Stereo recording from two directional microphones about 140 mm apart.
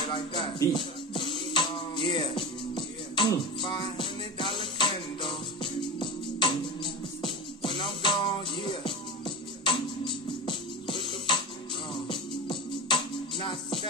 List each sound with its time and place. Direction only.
0.1 s music: 35° left (ahead or behind)